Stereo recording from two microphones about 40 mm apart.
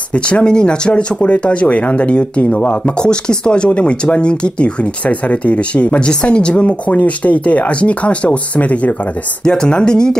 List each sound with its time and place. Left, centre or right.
0.1 s speech: left
6.5 s speech: left
9.4 s speech: left